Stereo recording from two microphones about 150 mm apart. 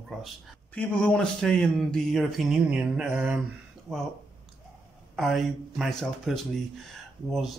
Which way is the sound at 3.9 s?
20° right (ahead or behind).